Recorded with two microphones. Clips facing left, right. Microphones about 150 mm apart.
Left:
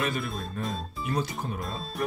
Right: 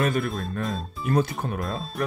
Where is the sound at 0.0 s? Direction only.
50° right (ahead or behind).